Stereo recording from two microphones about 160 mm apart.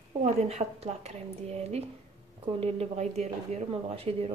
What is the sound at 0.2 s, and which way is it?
A woman's voice, 45° right (ahead or behind).